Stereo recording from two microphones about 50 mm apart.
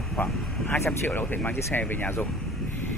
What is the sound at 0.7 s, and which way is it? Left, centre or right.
Speech, left.